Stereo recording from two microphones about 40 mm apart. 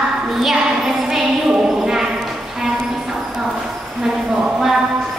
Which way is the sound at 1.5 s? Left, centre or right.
Centre.